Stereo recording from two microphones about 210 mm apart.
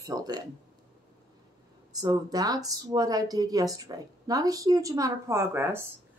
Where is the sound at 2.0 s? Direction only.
15° right (ahead or behind).